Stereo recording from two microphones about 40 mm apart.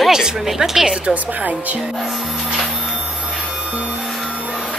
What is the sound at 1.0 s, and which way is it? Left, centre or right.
Speech, right.